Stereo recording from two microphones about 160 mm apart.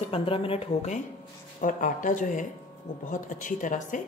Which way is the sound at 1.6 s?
55° left (ahead or behind).